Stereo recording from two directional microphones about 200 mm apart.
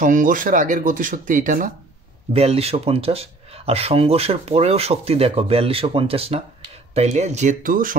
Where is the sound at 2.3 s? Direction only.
30° right (ahead or behind).